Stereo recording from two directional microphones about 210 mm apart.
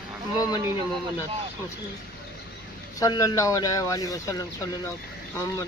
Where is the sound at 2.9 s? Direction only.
15° left (ahead or behind).